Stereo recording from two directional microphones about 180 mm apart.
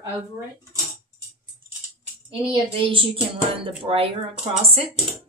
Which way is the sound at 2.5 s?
30° right (ahead or behind).